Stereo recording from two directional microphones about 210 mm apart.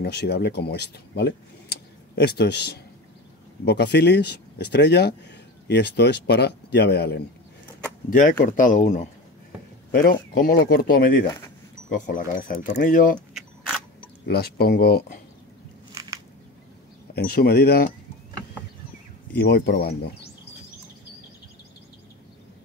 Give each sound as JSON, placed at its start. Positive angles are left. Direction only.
{"t": 0.0, "sound": "speech", "side_deg": 50}
{"t": 14.2, "sound": "speech", "side_deg": 50}
{"t": 15.9, "sound": "biting", "side_deg": -15}
{"t": 17.1, "sound": "speech", "side_deg": 45}
{"t": 19.3, "sound": "speech", "side_deg": 50}